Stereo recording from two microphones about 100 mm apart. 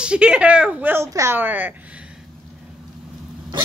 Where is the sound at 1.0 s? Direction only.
30° right (ahead or behind).